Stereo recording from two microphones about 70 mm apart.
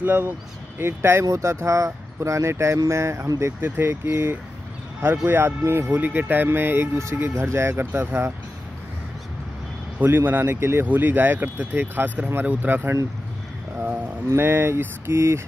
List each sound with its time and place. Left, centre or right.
0.0 s speech: right
3.6 s speech: right
5.9 s speech: right
9.9 s speech: right
10.9 s speech: right